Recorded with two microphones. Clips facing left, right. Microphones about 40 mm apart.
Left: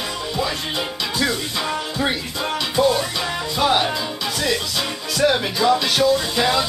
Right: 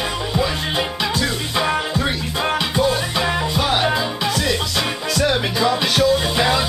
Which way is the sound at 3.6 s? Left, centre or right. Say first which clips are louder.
Left 4 dB; centre.